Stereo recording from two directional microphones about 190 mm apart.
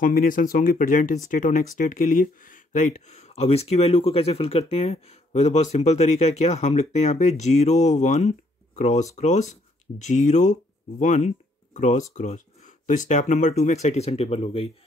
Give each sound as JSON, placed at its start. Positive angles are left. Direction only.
{"t": 0.0, "sound": "speech", "side_deg": 45}